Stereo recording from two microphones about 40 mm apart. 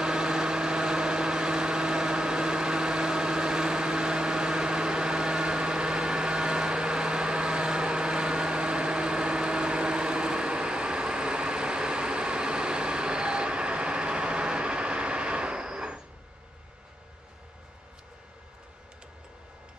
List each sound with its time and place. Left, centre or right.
0.0 s vehicle: centre